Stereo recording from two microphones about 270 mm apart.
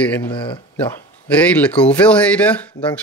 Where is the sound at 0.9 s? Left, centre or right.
Centre.